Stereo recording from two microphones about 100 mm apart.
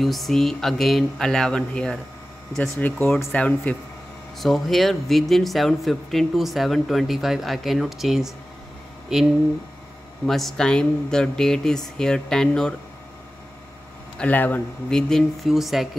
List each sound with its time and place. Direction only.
0.0 s speech: centre (ahead or behind)
2.8 s speech: 20° left (ahead or behind)
4.4 s speech: centre (ahead or behind)
10.2 s speech: 5° left (ahead or behind)
14.1 s speech: 15° left (ahead or behind); by 15.9 s centre (ahead or behind)